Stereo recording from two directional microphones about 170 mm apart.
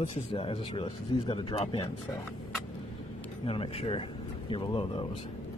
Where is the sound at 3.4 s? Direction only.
35° left (ahead or behind).